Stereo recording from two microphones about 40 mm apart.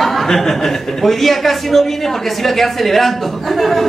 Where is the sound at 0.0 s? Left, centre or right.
Centre.